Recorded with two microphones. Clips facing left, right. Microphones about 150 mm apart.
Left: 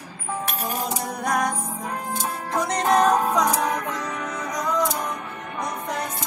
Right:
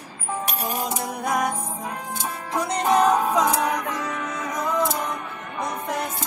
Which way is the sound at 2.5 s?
5° right (ahead or behind).